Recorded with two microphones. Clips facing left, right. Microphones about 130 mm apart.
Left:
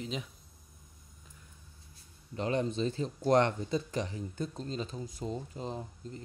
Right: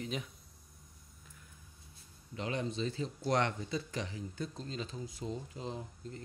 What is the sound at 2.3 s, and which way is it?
Speech, 40° left (ahead or behind).